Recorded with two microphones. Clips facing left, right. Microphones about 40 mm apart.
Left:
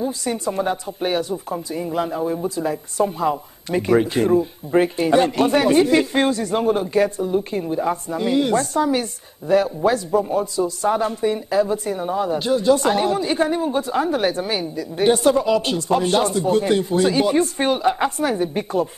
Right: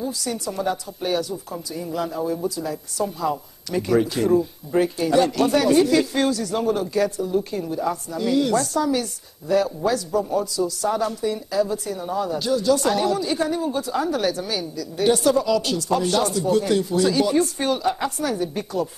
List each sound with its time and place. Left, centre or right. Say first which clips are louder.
0.0 s a man's voice: left 4 dB; left